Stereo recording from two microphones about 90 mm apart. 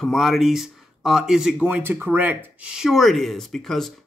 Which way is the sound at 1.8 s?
25° right (ahead or behind).